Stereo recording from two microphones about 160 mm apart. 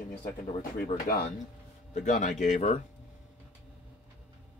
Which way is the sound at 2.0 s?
50° left (ahead or behind).